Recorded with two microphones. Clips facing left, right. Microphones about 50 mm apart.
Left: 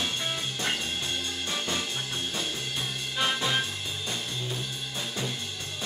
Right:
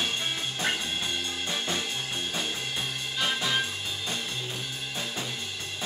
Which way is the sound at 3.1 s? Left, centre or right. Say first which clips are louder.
Left 2 dB; centre.